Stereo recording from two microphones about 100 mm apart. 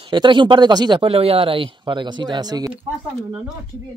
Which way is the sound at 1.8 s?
50° right (ahead or behind).